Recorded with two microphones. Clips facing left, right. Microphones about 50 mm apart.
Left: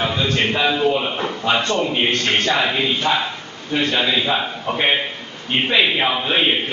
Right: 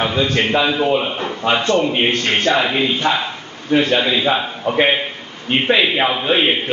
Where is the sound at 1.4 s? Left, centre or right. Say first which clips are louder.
Right 4 dB; right.